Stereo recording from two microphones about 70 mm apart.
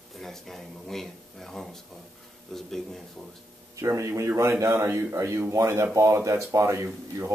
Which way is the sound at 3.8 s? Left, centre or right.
Right.